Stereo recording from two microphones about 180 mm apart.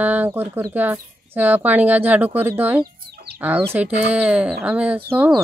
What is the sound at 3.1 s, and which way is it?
Chicken, 60° right (ahead or behind).